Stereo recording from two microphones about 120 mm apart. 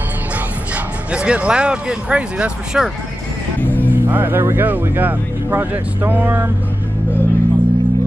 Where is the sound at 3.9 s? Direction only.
15° right (ahead or behind).